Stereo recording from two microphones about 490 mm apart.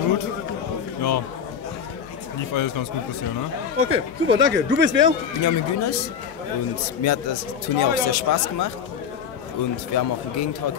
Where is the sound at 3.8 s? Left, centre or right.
Right.